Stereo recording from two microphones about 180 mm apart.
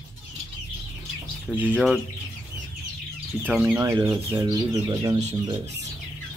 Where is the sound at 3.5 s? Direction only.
5° right (ahead or behind).